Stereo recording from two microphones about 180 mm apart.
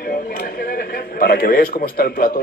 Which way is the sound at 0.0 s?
55° left (ahead or behind).